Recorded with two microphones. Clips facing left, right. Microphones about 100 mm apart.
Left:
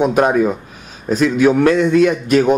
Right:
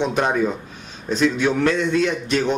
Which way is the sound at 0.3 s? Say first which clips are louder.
Left 5 dB; 10° left (ahead or behind).